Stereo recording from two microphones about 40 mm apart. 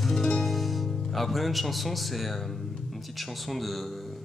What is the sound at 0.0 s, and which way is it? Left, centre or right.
Music, centre.